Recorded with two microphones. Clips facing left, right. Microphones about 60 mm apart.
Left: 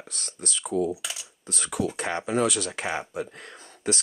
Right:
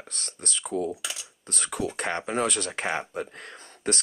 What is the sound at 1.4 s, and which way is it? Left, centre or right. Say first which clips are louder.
Speech: left 2 dB; right.